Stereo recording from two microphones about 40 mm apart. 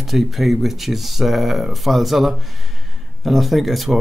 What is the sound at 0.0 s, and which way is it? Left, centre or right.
Speech, centre.